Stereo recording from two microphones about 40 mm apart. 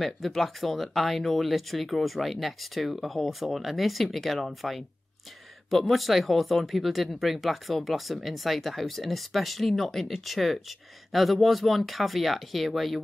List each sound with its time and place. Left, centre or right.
0.0 s speech: centre